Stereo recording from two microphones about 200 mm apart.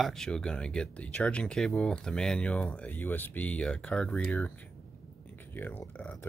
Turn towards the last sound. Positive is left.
turn(degrees=5)  # may be behind; listen again after turning